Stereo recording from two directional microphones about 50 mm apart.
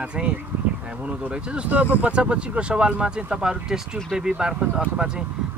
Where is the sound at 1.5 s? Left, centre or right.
Right.